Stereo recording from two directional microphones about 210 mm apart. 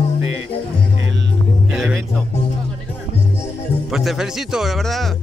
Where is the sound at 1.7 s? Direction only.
5° right (ahead or behind).